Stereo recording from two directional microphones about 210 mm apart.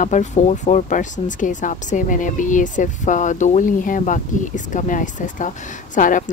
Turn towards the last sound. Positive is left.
turn(degrees=40)  # may be behind; listen again after turning